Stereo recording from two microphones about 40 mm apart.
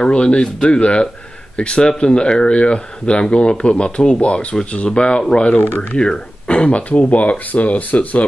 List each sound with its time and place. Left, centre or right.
0.0 s speech: left